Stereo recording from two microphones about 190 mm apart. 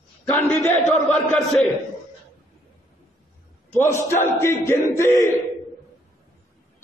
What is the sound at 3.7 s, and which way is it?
A man's voice, 15° left (ahead or behind).